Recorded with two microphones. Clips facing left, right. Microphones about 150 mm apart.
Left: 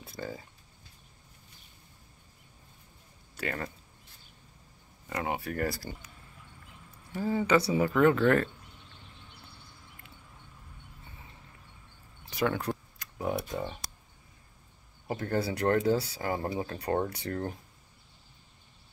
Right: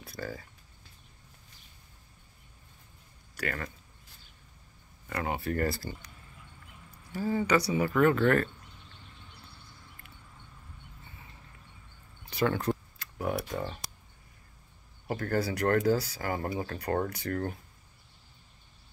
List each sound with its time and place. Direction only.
0.0 s speech: 20° left (ahead or behind)
3.3 s speech: 25° left (ahead or behind)
5.1 s speech: 15° left (ahead or behind)
7.2 s speech: 20° left (ahead or behind)
12.3 s tick: 10° left (ahead or behind)
15.0 s speech: 20° left (ahead or behind)